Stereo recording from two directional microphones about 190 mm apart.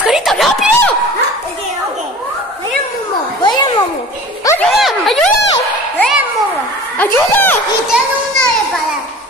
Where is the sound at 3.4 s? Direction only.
25° left (ahead or behind).